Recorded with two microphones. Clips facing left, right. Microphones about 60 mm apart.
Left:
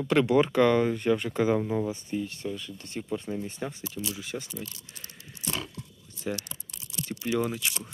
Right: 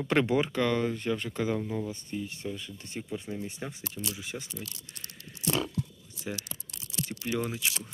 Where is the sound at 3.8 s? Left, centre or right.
Right.